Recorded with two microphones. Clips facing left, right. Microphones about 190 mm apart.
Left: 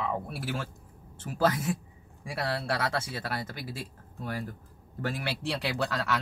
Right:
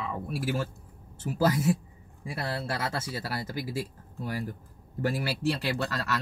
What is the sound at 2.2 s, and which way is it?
Speech, 85° left.